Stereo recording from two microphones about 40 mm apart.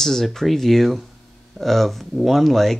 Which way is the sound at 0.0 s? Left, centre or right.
Centre.